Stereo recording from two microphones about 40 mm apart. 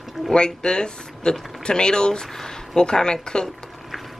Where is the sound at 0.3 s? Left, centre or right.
Left.